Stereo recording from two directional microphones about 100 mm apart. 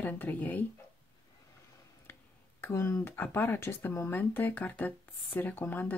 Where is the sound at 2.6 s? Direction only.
25° left (ahead or behind).